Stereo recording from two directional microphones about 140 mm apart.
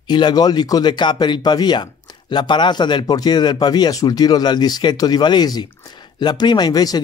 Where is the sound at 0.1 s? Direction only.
30° left (ahead or behind).